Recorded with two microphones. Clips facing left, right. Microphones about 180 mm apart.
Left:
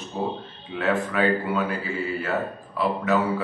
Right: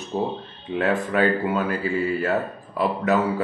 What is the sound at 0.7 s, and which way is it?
Speech, 45° right (ahead or behind).